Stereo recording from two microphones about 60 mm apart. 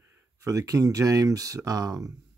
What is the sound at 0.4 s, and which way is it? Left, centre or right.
Speech, right.